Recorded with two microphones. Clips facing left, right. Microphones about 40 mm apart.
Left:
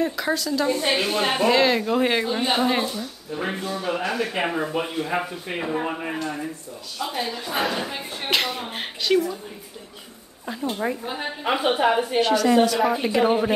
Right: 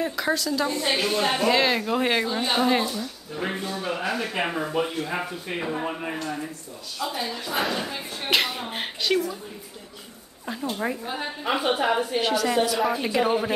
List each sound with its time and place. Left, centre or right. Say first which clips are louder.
0.0 s a woman's voice: left 1 dB; centre
0.7 s a woman's voice: left 3 dB; left
1.0 s speech: left 1 dB; centre
1.5 s a woman's voice: left 3 dB; centre
2.2 s speech: left 1 dB; centre
7.6 s a woman's voice: left 2 dB; centre
10.4 s a woman's voice: left 2 dB; centre
11.6 s a woman's voice: left 4 dB; centre
12.2 s a woman's voice: left 8 dB; centre